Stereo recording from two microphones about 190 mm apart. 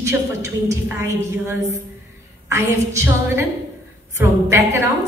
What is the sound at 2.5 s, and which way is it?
A woman's voice, 15° right (ahead or behind).